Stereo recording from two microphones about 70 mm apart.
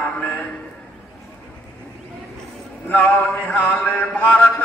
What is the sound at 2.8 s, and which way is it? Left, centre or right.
Speech, left.